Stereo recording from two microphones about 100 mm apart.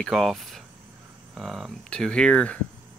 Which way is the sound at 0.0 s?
Centre (ahead or behind).